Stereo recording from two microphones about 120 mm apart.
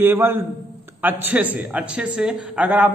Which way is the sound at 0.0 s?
20° right (ahead or behind).